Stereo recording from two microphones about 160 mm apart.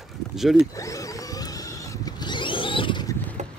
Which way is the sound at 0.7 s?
20° left (ahead or behind).